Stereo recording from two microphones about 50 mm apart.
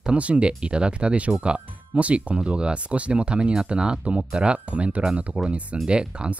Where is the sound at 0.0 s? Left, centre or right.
Right.